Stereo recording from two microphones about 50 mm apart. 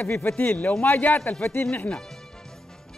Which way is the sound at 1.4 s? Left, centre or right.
Left.